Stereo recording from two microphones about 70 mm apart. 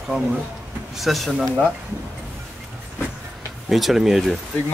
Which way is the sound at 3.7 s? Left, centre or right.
Centre.